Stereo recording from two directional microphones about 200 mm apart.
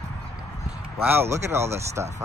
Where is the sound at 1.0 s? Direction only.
10° right (ahead or behind).